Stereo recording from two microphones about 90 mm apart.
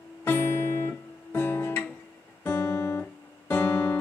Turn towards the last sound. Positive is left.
turn(degrees=20)  # may be behind; listen again after turning